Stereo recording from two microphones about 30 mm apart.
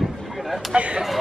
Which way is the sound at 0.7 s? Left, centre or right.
Right.